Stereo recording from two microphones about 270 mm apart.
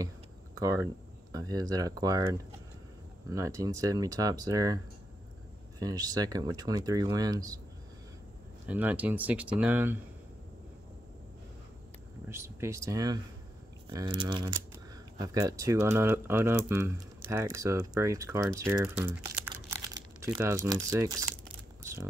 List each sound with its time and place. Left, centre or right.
0.6 s speech: centre
5.8 s speech: centre
8.6 s speech: centre
12.3 s speech: centre